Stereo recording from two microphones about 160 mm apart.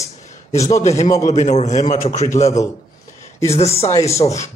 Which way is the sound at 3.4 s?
40° left (ahead or behind).